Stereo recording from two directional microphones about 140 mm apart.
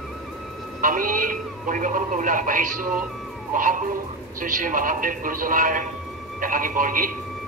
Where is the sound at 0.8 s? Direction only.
75° right (ahead or behind).